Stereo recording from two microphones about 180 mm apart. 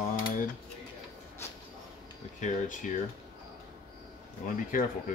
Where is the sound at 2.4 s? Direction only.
45° left (ahead or behind).